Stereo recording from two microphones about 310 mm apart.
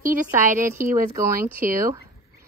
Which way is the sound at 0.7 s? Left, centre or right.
Centre.